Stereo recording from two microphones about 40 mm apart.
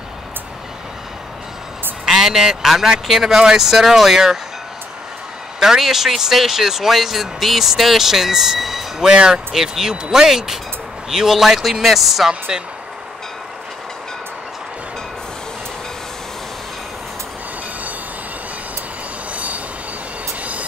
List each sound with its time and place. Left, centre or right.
2.0 s a man's voice: centre
5.6 s speech: centre
9.0 s speech: right; by 12.3 s centre
12.3 s speech: centre
19.3 s train: right